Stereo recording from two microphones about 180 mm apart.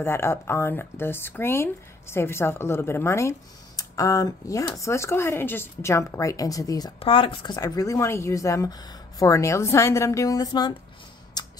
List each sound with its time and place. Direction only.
0.0 s speech: 15° left (ahead or behind)
11.4 s tick-tock: 20° left (ahead or behind)